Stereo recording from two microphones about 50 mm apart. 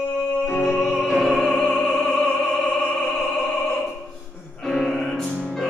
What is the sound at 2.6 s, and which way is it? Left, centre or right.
Opera, left.